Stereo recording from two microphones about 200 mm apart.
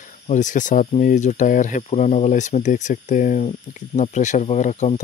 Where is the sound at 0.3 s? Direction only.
40° left (ahead or behind).